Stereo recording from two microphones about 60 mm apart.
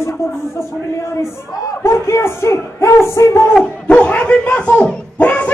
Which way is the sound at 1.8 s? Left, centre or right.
Left.